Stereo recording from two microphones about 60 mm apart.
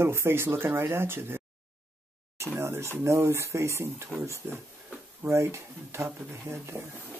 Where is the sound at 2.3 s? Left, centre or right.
Right.